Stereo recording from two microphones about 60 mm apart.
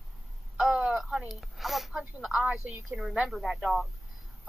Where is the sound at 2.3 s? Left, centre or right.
Centre.